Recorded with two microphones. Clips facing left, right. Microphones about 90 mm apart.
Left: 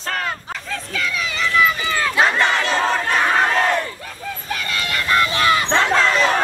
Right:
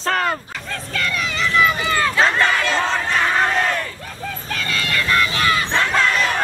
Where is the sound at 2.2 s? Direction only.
20° left (ahead or behind).